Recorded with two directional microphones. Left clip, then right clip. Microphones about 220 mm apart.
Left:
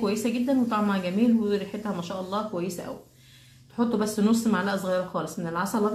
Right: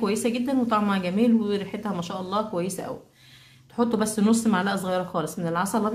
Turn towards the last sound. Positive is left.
turn(degrees=-40)  # may be behind; listen again after turning